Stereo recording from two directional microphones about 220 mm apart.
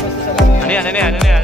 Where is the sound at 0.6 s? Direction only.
5° left (ahead or behind).